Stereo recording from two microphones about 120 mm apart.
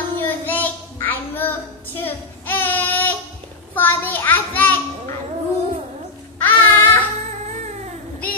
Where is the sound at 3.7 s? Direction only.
15° left (ahead or behind).